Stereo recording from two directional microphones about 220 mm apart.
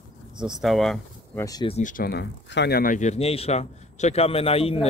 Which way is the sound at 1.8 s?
35° left (ahead or behind).